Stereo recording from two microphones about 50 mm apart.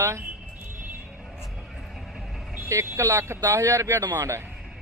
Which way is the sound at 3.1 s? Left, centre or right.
Right.